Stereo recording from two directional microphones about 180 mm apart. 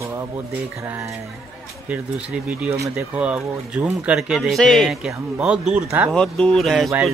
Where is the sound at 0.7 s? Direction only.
10° right (ahead or behind).